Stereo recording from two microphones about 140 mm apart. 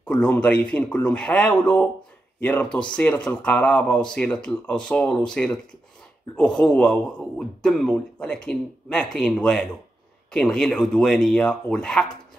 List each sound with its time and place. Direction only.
0.1 s a man's voice: 10° left (ahead or behind)